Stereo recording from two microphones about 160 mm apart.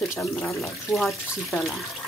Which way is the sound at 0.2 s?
Centre (ahead or behind).